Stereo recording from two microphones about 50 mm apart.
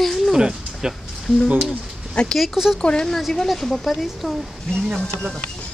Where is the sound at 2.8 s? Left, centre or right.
Centre.